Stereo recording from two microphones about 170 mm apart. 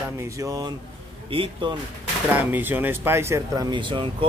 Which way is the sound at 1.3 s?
30° right (ahead or behind).